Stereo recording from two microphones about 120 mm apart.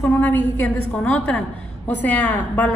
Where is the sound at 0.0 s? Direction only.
15° left (ahead or behind).